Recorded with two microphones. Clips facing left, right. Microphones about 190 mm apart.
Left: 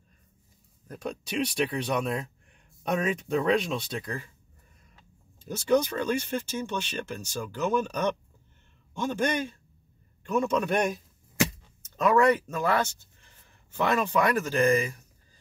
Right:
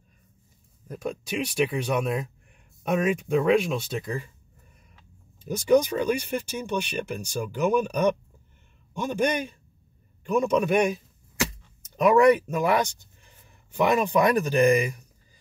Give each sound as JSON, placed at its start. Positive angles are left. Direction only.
{"t": 0.8, "sound": "speech", "side_deg": -5}
{"t": 5.4, "sound": "speech", "side_deg": -10}
{"t": 12.0, "sound": "speech", "side_deg": -15}